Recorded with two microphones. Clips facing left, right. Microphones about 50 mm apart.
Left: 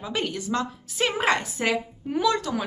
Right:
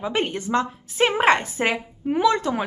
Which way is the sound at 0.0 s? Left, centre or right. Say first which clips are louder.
Right 4 dB; right.